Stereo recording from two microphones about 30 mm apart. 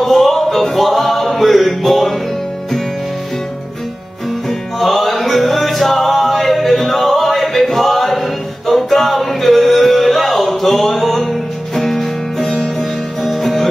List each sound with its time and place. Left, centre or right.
0.0 s music: centre
4.7 s music: centre
12.4 s music: left
13.2 s music: centre